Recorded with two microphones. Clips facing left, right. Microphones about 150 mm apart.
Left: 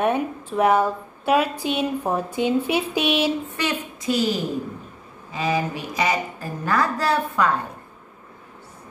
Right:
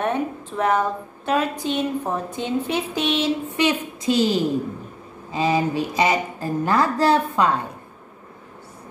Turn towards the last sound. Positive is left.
turn(degrees=-25)  # may be behind; listen again after turning